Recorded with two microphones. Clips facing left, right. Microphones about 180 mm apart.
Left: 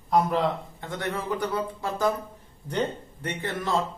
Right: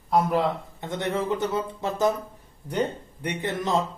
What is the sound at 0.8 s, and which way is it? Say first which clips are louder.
Speech: right 5 dB; 20° right (ahead or behind).